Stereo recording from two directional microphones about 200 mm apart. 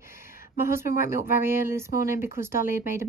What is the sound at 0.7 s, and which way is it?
Speech, 10° right (ahead or behind).